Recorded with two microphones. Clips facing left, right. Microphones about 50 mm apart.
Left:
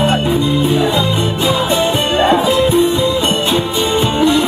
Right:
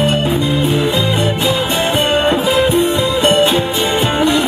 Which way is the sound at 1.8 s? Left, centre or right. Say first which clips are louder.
Even; right.